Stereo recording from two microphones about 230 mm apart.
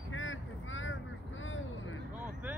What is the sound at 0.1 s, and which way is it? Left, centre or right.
Boat, left.